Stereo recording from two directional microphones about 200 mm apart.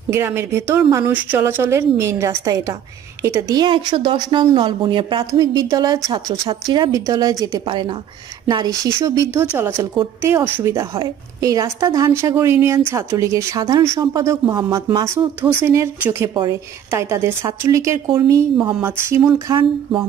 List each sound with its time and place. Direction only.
0.1 s a woman's voice: 10° right (ahead or behind)